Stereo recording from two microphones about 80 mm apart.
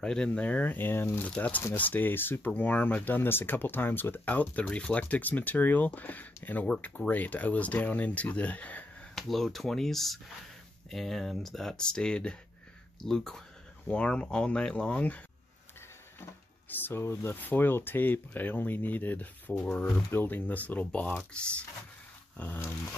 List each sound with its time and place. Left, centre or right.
0.0 s speech: centre
6.7 s speech: centre
9.1 s speech: centre
16.7 s speech: left
22.4 s speech: left